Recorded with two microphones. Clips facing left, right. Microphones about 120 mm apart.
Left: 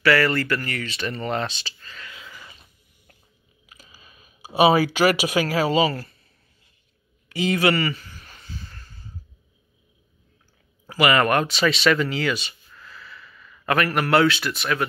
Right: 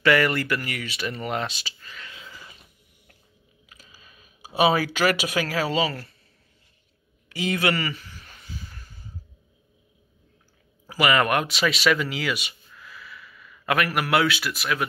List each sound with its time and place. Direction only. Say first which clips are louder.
0.0 s speech: left 1 dB; 15° right (ahead or behind)
2.0 s a sound: left 1 dB; 25° right (ahead or behind)
3.7 s speech: left 2 dB; 5° left (ahead or behind)
7.2 s speech: left 4 dB; centre (ahead or behind)
8.6 s a sound: even; 10° right (ahead or behind)
10.9 s speech: left 2 dB; centre (ahead or behind)